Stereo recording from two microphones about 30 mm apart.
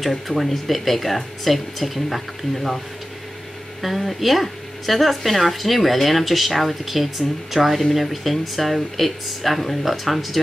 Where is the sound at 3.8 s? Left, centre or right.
Centre.